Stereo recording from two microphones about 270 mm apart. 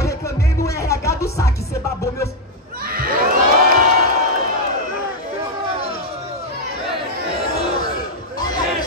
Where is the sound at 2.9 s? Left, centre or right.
Right.